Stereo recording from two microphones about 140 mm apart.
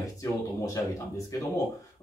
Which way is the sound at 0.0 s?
20° left (ahead or behind).